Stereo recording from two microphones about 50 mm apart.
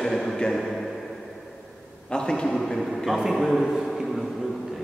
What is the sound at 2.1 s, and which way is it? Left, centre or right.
A man's voice, centre.